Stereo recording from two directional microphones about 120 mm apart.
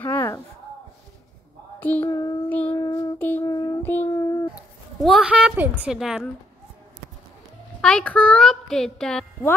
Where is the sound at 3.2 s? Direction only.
15° left (ahead or behind).